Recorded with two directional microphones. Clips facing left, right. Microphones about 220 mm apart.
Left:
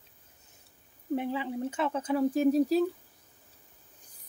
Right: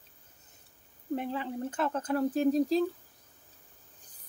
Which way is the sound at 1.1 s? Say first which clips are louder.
Left 2 dB; 5° left (ahead or behind).